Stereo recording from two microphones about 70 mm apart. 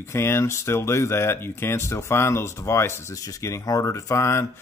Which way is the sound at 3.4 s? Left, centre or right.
Left.